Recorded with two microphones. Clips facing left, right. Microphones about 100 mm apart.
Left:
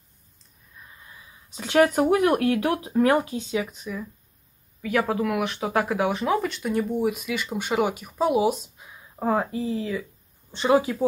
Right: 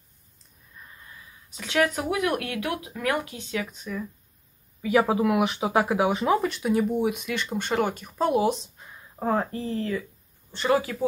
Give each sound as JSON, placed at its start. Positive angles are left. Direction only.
{"t": 1.5, "sound": "speech", "side_deg": 35}
{"t": 3.9, "sound": "speech", "side_deg": 5}
{"t": 4.8, "sound": "speech", "side_deg": -15}
{"t": 10.5, "sound": "speech", "side_deg": 20}